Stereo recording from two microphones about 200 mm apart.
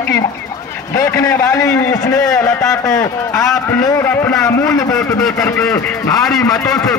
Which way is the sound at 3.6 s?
20° left (ahead or behind).